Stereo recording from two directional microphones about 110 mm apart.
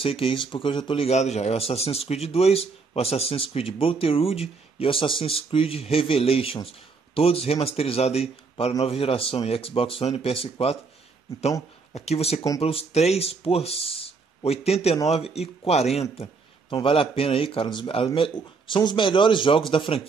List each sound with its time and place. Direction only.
0.0 s a man's voice: 60° left (ahead or behind)
11.9 s speech: 75° left (ahead or behind)
16.8 s speech: 55° left (ahead or behind)